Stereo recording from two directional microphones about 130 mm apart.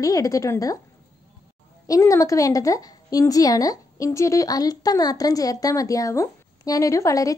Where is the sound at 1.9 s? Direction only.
25° left (ahead or behind).